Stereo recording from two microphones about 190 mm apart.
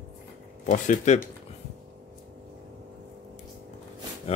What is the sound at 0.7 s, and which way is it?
Speech, 40° left (ahead or behind).